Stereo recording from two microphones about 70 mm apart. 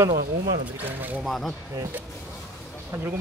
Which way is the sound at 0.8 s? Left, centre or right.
Right.